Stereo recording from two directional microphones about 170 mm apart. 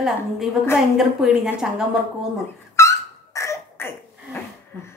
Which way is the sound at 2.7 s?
15° left (ahead or behind).